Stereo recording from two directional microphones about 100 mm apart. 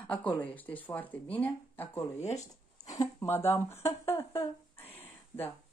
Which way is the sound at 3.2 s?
25° left (ahead or behind).